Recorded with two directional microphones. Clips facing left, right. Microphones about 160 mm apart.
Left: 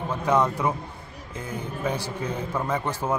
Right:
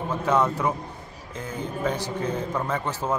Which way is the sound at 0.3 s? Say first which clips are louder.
Even; 10° left (ahead or behind).